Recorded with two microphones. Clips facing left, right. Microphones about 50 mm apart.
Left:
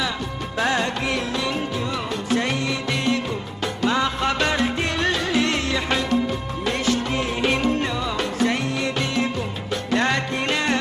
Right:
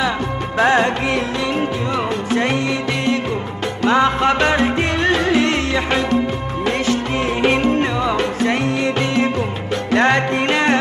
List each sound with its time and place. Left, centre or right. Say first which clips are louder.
0.6 s music: right 7 dB; right
2.3 s music: right 4 dB; right
3.8 s music: right 7 dB; right
7.4 s music: right 5 dB; right